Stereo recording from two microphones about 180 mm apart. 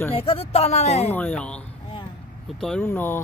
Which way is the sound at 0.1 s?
30° left (ahead or behind).